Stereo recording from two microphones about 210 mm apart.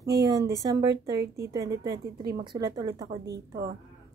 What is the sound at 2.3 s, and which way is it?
Speech, 20° right (ahead or behind).